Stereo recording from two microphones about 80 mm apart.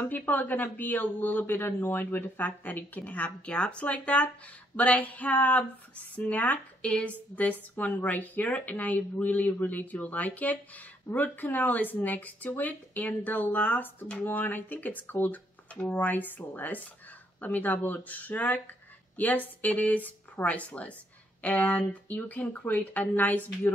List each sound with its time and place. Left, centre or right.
0.0 s speech: left
4.7 s a sound: centre
6.1 s speech: centre